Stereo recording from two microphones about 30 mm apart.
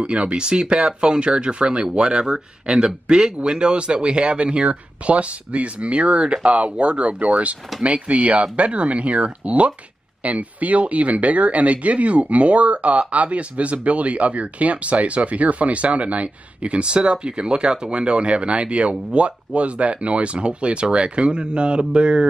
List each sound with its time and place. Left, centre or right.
0.0 s speech: right
16.8 s speech: right